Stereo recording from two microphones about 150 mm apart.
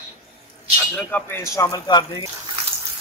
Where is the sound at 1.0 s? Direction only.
10° left (ahead or behind); by 2.3 s 30° left (ahead or behind).